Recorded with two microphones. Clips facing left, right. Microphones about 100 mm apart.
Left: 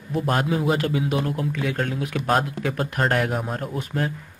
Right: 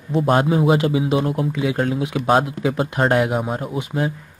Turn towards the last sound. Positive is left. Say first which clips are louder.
# right 4 dB
turn(degrees=-15)  # may be behind; listen again after turning